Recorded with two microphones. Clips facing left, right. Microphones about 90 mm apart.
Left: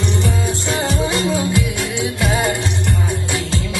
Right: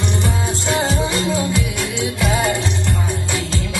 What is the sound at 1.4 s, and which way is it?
Music, 20° left (ahead or behind).